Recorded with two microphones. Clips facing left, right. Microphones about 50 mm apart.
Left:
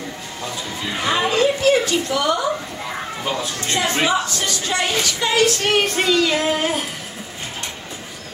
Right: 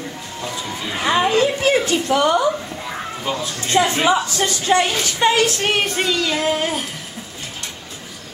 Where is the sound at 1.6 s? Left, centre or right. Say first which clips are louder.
Even; right.